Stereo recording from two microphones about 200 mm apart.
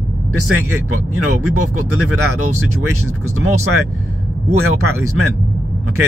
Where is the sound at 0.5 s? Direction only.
90° right.